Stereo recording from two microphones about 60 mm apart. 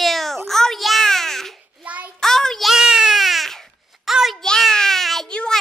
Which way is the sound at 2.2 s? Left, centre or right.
Centre.